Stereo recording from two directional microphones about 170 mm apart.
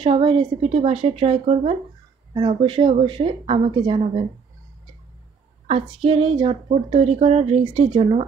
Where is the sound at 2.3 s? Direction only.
25° right (ahead or behind).